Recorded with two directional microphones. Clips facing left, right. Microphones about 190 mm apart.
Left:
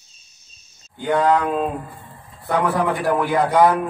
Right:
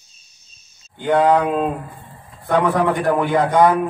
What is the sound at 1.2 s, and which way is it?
Speech, 10° right (ahead or behind).